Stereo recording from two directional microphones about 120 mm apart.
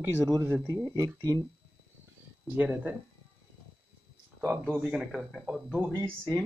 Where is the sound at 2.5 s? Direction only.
15° right (ahead or behind).